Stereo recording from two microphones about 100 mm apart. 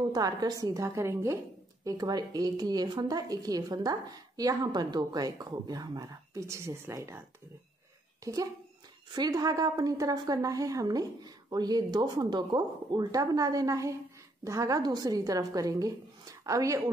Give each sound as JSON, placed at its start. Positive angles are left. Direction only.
{"t": 0.1, "sound": "a woman's voice", "side_deg": -40}
{"t": 1.9, "sound": "a woman's voice", "side_deg": -40}